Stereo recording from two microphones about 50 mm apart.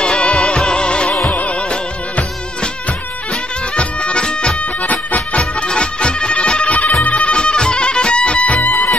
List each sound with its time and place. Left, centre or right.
0.0 s music: centre
3.7 s bagpipes: left
5.4 s music: centre; by 8.9 s left